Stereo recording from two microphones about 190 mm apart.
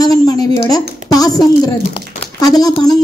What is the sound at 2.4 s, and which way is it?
Speech, 20° left (ahead or behind).